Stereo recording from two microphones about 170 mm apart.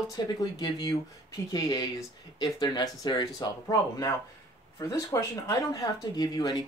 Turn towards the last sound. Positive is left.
turn(degrees=20)  # may be behind; listen again after turning